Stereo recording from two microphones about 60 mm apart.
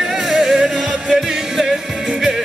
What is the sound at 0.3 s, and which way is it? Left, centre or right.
Music, centre.